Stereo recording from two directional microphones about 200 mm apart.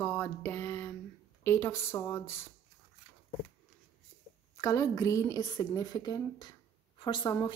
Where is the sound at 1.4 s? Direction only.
10° left (ahead or behind).